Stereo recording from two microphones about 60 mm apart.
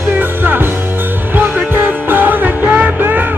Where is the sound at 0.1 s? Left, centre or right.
Right.